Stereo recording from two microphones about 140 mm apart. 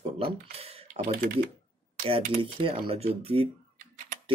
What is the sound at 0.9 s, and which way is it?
Speech, 75° right (ahead or behind).